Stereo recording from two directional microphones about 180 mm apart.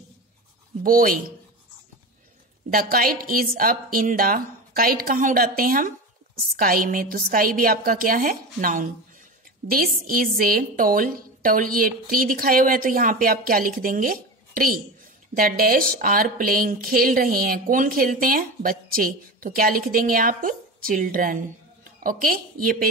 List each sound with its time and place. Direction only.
0.8 s speech: 50° right (ahead or behind)
2.7 s speech: 50° right (ahead or behind)